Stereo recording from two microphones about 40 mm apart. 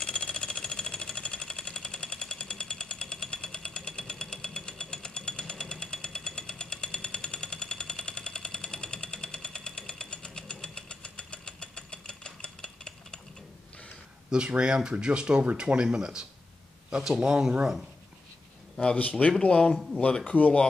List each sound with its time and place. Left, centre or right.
0.0 s jackhammer: left
3.5 s a sound: left
14.6 s speech: right
18.8 s speech: left
19.4 s speech: left
20.2 s speech: left